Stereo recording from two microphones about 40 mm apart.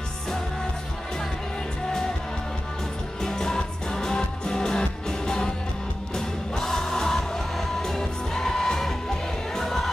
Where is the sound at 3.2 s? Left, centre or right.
Centre.